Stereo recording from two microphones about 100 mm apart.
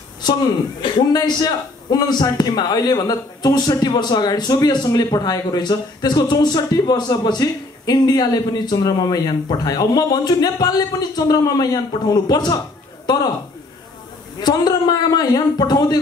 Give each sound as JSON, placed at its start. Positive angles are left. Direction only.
{"t": 1.1, "sound": "a man's voice", "side_deg": 40}
{"t": 14.4, "sound": "speech", "side_deg": 45}